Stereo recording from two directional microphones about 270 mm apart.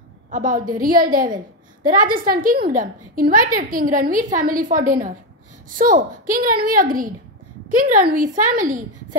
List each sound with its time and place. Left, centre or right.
0.3 s a woman's voice: right